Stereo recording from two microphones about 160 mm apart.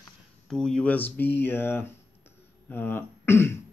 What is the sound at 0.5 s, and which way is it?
Speech, 5° left (ahead or behind).